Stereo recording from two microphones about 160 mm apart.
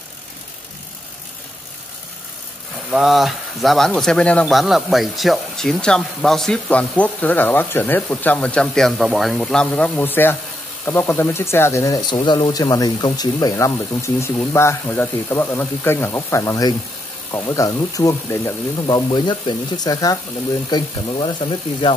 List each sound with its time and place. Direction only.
2.9 s speech: centre (ahead or behind); by 21.9 s 30° left (ahead or behind)